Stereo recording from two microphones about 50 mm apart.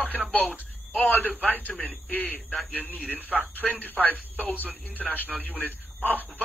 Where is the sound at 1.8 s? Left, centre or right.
Left.